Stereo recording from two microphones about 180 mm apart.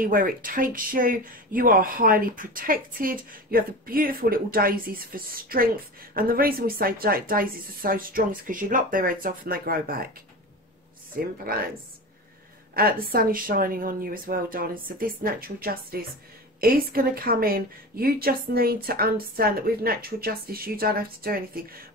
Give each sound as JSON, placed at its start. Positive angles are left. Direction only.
{"t": 0.0, "sound": "speech", "side_deg": -50}
{"t": 11.1, "sound": "a woman's voice", "side_deg": -55}
{"t": 12.7, "sound": "a woman's voice", "side_deg": -55}